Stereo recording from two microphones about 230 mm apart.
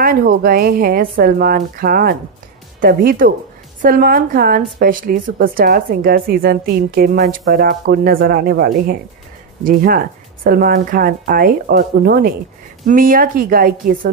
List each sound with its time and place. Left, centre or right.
0.0 s a woman's voice: right